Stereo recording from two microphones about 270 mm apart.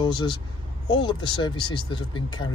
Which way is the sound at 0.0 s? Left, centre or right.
Centre.